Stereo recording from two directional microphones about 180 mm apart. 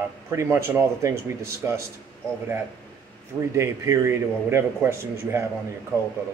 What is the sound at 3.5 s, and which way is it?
A man's voice, 15° right (ahead or behind).